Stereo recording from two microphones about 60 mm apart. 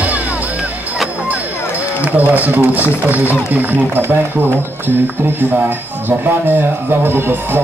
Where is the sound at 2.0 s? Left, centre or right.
Right.